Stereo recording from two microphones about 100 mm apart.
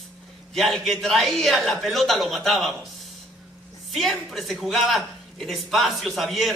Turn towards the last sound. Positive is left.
turn(degrees=0)  # may be behind; listen again after turning